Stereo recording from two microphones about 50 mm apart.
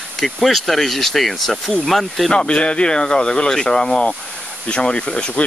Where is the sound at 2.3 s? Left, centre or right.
Centre.